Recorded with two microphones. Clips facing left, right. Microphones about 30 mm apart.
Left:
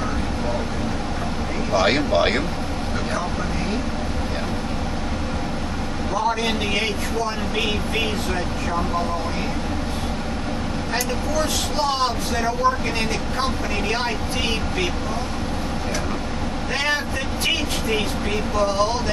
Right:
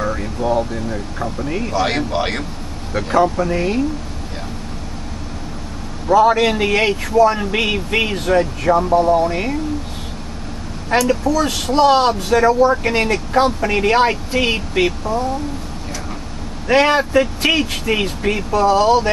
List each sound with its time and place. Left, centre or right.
1.7 s speech: centre
3.1 s speech: right
6.1 s speech: right
10.9 s speech: right
11.7 s speech: right
16.6 s speech: right